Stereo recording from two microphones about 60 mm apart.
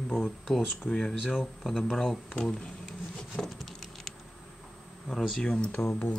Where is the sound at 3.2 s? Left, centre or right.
Centre.